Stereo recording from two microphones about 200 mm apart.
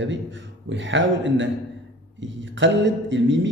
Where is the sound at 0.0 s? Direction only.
65° right (ahead or behind).